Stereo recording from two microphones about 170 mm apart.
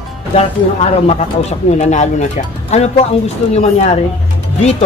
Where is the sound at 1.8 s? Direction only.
45° left (ahead or behind).